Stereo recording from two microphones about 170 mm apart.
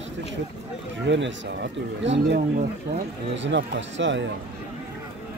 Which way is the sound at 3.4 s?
90° right.